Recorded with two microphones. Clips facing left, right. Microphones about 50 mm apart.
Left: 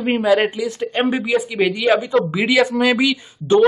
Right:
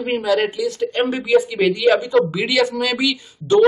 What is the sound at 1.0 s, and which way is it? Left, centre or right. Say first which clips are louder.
A man's voice: right 2 dB; centre.